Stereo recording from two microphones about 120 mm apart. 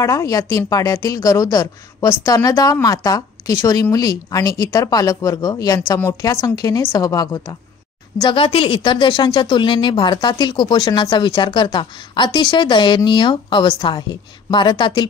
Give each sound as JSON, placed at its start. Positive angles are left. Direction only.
{"t": 0.0, "sound": "a woman's voice", "side_deg": 25}
{"t": 8.2, "sound": "speech", "side_deg": 45}